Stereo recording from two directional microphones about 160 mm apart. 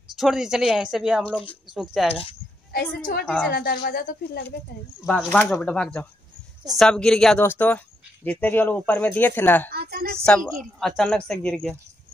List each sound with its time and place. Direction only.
0.1 s a woman's voice: centre (ahead or behind)
2.7 s speech: 75° left (ahead or behind)
5.0 s a woman's voice: 5° left (ahead or behind)
9.7 s a woman's voice: 75° right (ahead or behind)
10.8 s a woman's voice: centre (ahead or behind)